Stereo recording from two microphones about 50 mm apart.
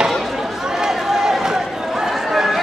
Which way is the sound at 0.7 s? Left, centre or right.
Centre.